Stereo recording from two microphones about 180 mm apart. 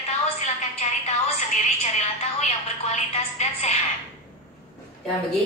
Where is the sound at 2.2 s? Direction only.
40° left (ahead or behind).